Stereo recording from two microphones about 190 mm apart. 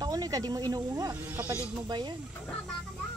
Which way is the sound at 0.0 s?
20° right (ahead or behind).